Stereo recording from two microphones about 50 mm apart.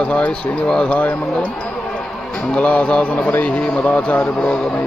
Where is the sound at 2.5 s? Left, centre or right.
Left.